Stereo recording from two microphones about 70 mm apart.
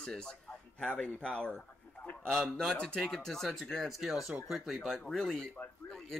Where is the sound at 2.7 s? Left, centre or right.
Centre.